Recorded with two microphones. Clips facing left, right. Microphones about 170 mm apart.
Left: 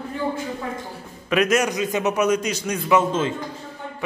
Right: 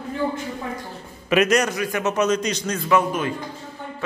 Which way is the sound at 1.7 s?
20° left (ahead or behind).